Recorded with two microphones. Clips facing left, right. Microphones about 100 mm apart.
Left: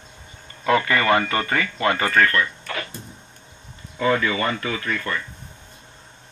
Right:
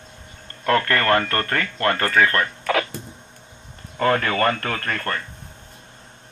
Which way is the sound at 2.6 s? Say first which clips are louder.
Right 9 dB; 90° right.